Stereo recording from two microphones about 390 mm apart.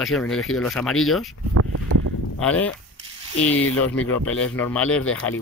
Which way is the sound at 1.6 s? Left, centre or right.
Right.